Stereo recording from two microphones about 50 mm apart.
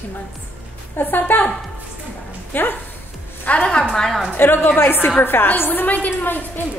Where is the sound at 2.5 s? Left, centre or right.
Left.